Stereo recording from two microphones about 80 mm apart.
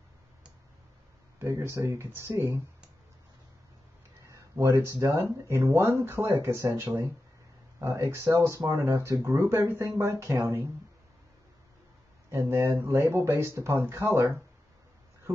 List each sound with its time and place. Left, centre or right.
1.4 s speech: right
4.2 s a sound: right
4.6 s speech: right
12.3 s speech: right